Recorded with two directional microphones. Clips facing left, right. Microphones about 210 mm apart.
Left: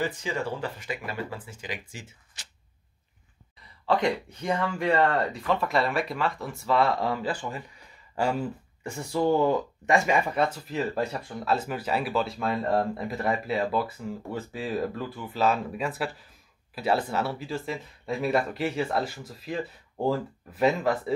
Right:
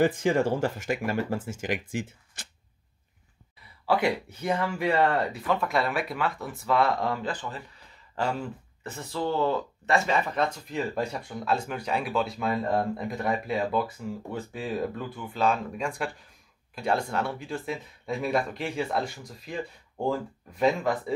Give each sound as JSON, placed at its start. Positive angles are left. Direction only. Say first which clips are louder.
{"t": 0.0, "sound": "speech", "louder": "right 7 dB", "side_deg": -50}
{"t": 3.6, "sound": "speech", "louder": "even", "side_deg": -5}